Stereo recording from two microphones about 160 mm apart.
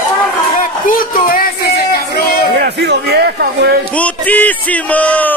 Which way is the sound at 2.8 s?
85° right.